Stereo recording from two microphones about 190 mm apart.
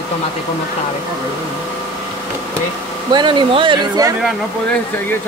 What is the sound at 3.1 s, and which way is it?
Speech, 25° right (ahead or behind).